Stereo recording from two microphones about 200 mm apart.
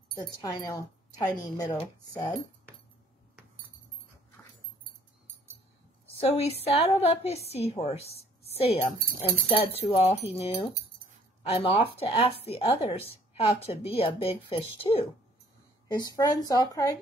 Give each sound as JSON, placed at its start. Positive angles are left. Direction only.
{"t": 0.1, "sound": "speech", "side_deg": 20}
{"t": 6.1, "sound": "a woman's voice", "side_deg": 30}